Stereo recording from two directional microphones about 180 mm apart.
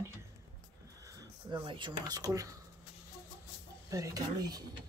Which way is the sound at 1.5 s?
25° right (ahead or behind).